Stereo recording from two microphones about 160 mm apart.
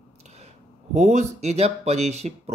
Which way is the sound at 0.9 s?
45° right (ahead or behind).